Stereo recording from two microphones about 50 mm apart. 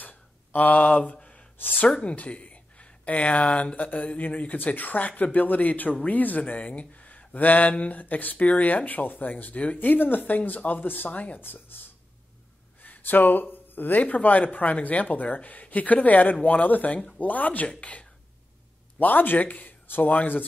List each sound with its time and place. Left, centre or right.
0.0 s a sound: left
1.1 s gasp: centre
2.0 s speech: left
11.4 s speech: left
18.9 s speech: left